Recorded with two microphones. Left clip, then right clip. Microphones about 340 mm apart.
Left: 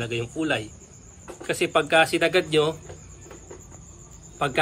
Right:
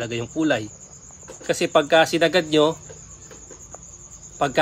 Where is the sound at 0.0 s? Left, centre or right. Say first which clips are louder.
Right 4 dB; right.